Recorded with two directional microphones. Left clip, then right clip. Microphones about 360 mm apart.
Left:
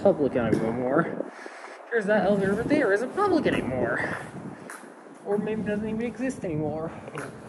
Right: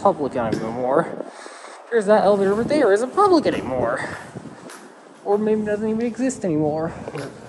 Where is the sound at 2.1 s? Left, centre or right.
Right.